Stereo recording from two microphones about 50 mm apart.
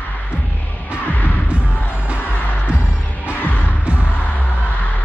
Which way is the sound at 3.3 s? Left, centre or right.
Left.